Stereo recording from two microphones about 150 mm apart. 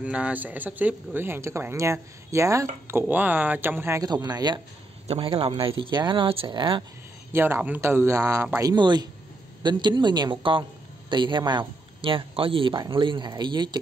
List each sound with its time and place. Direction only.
0.0 s speech: 10° right (ahead or behind); by 4.6 s 25° right (ahead or behind)
5.0 s speech: 40° right (ahead or behind)
7.3 s speech: 15° right (ahead or behind)
8.7 s speech: 30° right (ahead or behind)